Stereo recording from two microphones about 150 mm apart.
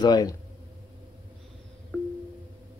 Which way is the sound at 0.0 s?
25° left (ahead or behind).